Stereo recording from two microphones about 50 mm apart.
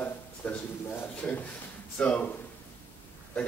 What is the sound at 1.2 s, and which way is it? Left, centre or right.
Speech, left.